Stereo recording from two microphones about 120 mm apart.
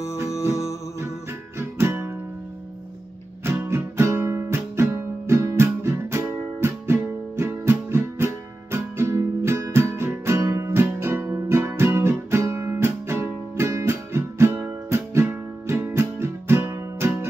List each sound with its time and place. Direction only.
0.5 s music: 25° left (ahead or behind)
1.8 s music: 20° right (ahead or behind)
3.5 s music: 20° right (ahead or behind)